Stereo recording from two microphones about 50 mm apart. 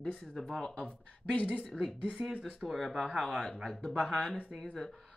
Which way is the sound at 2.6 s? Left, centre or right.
Centre.